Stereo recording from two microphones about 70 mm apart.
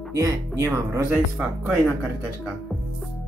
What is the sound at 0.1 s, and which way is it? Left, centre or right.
Speech, right.